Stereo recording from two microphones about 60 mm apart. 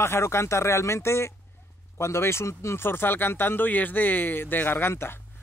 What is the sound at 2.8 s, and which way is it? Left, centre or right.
Speech, left.